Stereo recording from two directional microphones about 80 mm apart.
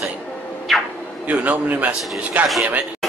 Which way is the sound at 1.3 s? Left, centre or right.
Centre.